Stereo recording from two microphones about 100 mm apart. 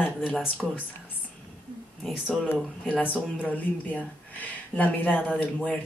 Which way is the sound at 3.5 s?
15° left (ahead or behind).